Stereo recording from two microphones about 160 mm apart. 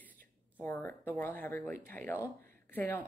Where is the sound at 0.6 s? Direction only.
10° left (ahead or behind).